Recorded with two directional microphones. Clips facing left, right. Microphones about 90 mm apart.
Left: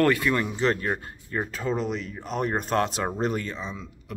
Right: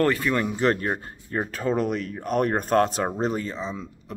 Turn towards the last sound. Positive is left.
turn(degrees=-30)  # may be behind; listen again after turning